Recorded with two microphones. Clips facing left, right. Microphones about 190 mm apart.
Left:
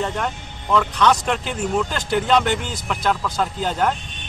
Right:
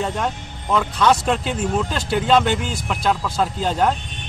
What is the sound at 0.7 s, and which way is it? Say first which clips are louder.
Speech: even; 5° right (ahead or behind).